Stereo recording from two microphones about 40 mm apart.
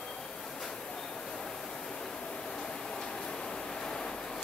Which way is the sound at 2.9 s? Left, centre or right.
Centre.